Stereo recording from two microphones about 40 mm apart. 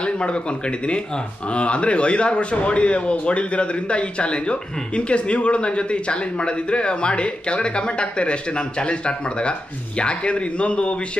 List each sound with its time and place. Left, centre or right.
0.0 s speech: left